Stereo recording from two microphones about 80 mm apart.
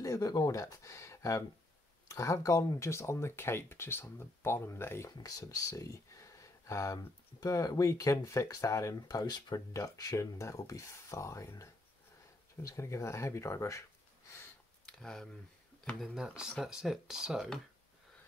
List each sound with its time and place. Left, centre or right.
0.0 s speech: left
5.2 s speech: left
14.9 s speech: centre
16.2 s speech: centre